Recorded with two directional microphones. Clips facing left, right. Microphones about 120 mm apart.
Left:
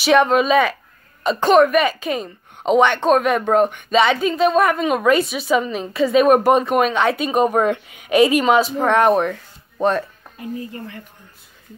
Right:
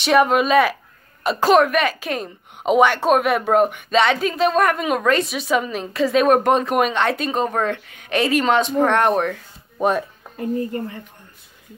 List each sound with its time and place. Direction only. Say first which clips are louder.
0.0 s a woman's voice: left 1 dB; 5° right (ahead or behind)
7.3 s speech: left 5 dB; 15° left (ahead or behind)
9.8 s speech: left 1 dB; 10° right (ahead or behind)
10.3 s speech: right 6 dB; 50° right (ahead or behind)